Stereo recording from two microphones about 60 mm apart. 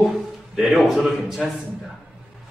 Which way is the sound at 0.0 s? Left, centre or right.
Centre.